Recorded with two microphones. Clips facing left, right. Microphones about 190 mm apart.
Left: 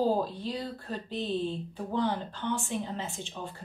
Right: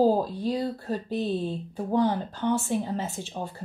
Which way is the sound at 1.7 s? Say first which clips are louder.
Right 7 dB; 45° right (ahead or behind).